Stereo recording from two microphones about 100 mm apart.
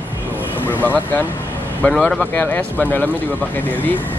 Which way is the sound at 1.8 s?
5° left (ahead or behind).